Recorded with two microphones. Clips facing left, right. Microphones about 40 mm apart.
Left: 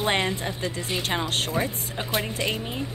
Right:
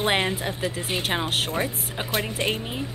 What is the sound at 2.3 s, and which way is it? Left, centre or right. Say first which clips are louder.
Speech: right 2 dB; right.